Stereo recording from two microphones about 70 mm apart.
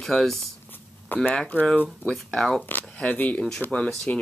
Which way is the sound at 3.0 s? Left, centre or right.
Left.